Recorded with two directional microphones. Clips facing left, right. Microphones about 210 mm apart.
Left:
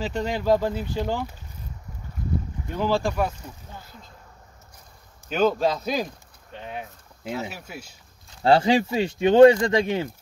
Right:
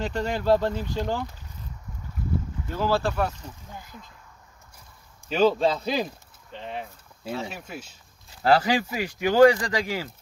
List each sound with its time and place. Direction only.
0.0 s speech: 10° left (ahead or behind)
2.7 s speech: 15° left (ahead or behind)
5.3 s speech: centre (ahead or behind)
8.4 s speech: 25° left (ahead or behind)